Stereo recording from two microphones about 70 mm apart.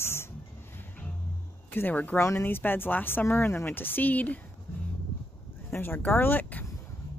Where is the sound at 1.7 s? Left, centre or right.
Left.